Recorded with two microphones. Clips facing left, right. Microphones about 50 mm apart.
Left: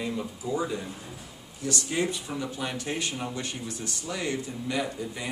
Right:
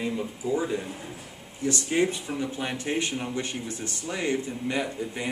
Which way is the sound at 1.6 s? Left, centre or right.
Right.